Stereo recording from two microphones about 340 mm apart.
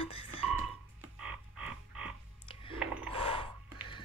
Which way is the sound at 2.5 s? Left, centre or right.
Centre.